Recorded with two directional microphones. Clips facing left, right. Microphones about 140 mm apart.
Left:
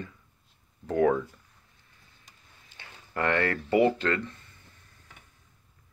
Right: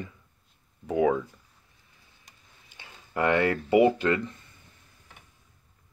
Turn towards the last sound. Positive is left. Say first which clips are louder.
# right 2 dB
turn(degrees=-15)  # may be behind; listen again after turning